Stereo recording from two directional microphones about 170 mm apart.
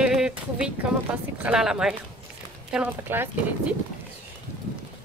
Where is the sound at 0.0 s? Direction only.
5° right (ahead or behind).